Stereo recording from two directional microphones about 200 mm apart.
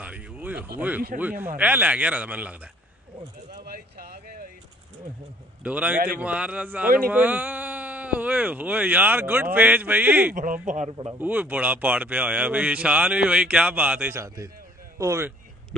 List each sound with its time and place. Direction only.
0.0 s a sound: 5° right (ahead or behind)
0.7 s speech: 10° right (ahead or behind)
3.5 s a sound: 50° right (ahead or behind)
5.6 s speech: 5° right (ahead or behind)
10.3 s speech: 40° right (ahead or behind)
11.1 s speech: 10° right (ahead or behind)